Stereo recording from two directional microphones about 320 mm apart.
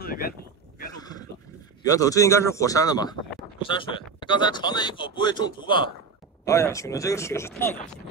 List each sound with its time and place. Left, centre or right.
0.0 s speech: left
0.9 s wild animals: centre
1.9 s speech: centre